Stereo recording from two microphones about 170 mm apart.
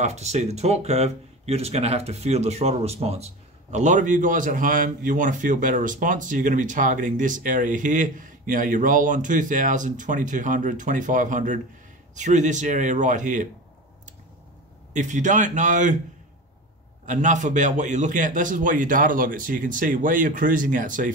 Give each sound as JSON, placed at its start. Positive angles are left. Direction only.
{"t": 0.0, "sound": "speech", "side_deg": -40}
{"t": 14.9, "sound": "speech", "side_deg": -45}
{"t": 17.0, "sound": "speech", "side_deg": -45}